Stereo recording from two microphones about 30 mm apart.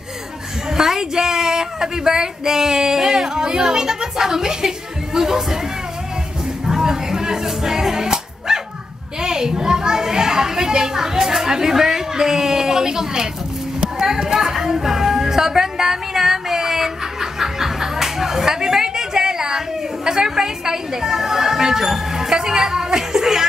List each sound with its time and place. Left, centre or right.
0.7 s speech: centre
6.6 s music: centre
9.2 s speech: centre
13.9 s music: centre
20.1 s speech: right